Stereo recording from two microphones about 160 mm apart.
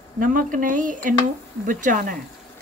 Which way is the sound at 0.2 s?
60° right (ahead or behind).